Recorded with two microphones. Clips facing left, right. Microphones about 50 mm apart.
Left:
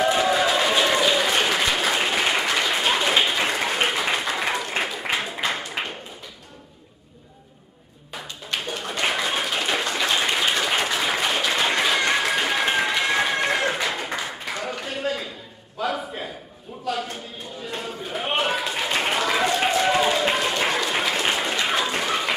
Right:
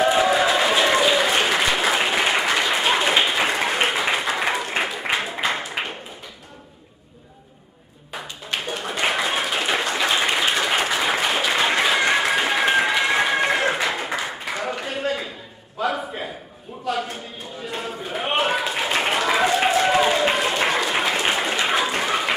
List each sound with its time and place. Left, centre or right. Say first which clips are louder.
0.0 s applause: right 2 dB; centre
8.1 s clapping: right 2 dB; centre
13.8 s a sound: right 2 dB; centre